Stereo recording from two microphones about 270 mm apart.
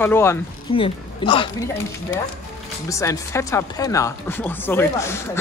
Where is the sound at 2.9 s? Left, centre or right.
Centre.